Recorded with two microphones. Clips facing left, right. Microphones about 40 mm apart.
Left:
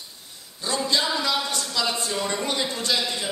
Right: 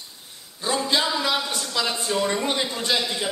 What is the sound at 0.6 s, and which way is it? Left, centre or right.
A man's voice, centre.